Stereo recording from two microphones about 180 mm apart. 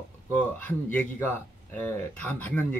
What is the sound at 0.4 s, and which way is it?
Speech, 10° left (ahead or behind).